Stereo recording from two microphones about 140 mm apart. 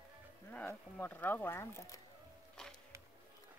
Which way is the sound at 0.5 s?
15° left (ahead or behind).